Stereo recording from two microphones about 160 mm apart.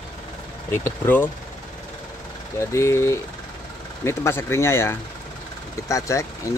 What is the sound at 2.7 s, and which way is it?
Speech, 15° left (ahead or behind).